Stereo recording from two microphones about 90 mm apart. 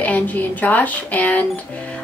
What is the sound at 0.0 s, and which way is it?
Speech, 20° left (ahead or behind).